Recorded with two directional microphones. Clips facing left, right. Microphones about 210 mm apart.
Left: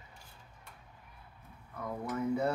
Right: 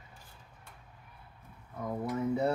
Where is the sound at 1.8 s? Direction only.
20° right (ahead or behind).